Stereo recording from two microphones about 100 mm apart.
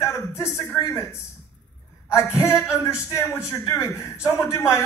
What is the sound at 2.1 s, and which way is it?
A man's voice, 25° left (ahead or behind).